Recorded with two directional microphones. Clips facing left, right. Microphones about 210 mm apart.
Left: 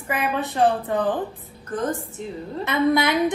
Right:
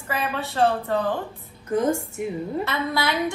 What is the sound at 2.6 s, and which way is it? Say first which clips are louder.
Speech: left 9 dB; 15° left (ahead or behind).